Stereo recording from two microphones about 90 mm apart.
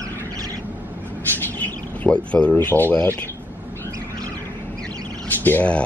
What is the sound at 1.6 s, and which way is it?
Speech, 15° left (ahead or behind).